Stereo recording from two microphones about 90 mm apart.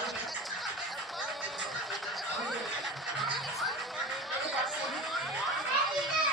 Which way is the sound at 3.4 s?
Centre (ahead or behind).